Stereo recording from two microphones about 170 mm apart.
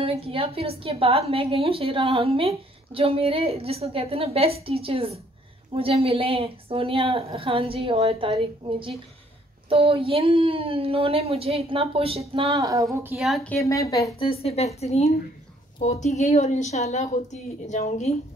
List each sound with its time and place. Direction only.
0.0 s a woman's voice: 35° right (ahead or behind)
12.5 s speech: 20° right (ahead or behind)
13.2 s speech: 5° left (ahead or behind)
13.6 s speech: 20° left (ahead or behind)
14.2 s speech: 35° left (ahead or behind)